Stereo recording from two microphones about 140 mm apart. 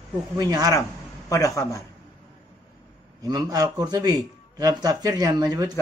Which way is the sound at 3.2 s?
25° right (ahead or behind).